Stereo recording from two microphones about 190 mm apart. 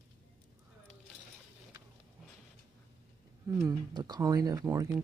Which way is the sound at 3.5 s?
15° right (ahead or behind).